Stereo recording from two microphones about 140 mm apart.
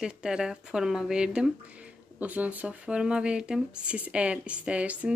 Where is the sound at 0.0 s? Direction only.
5° right (ahead or behind).